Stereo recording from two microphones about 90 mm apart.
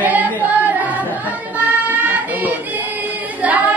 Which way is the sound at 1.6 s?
20° right (ahead or behind).